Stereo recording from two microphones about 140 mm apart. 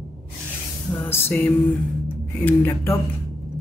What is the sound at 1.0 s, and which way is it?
Music, 15° left (ahead or behind).